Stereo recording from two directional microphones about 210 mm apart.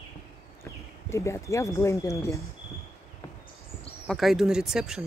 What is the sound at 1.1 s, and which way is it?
Speech, 15° left (ahead or behind).